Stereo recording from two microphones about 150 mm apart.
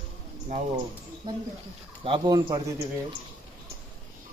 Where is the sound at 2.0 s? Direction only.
30° right (ahead or behind).